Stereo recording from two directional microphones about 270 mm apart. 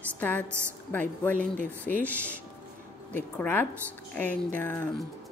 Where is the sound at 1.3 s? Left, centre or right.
Right.